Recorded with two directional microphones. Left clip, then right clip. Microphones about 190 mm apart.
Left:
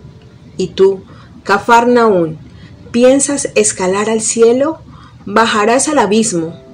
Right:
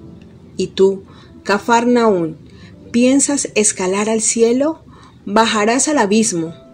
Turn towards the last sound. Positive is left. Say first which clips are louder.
# left 3 dB
turn(degrees=-40)  # may be behind; listen again after turning